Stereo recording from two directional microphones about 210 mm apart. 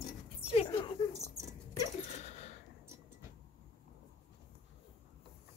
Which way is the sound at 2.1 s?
30° left (ahead or behind).